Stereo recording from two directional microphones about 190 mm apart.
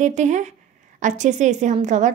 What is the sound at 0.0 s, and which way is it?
A woman's voice, 40° right (ahead or behind).